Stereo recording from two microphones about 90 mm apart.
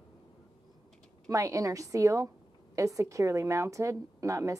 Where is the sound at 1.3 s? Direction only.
40° right (ahead or behind).